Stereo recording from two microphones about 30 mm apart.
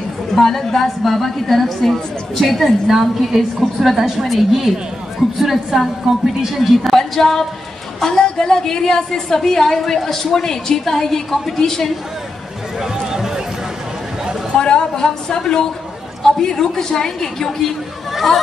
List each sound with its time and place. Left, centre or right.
0.3 s a woman's voice: centre
7.0 s a woman's voice: centre
12.8 s a sound: centre
14.6 s a woman's voice: left